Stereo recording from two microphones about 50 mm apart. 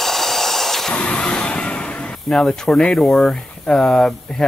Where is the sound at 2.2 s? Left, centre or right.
Centre.